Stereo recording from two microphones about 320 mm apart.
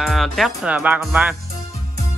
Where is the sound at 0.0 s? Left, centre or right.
Centre.